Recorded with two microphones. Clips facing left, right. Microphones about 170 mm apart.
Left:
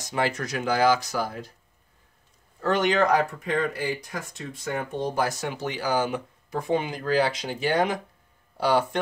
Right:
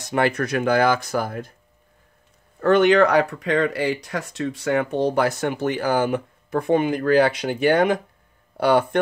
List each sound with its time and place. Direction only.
0.0 s speech: 60° right (ahead or behind)
2.6 s speech: 60° right (ahead or behind)